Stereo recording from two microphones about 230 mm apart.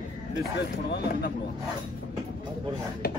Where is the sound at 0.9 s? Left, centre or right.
Left.